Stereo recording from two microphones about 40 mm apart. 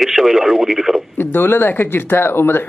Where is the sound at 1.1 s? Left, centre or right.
Left.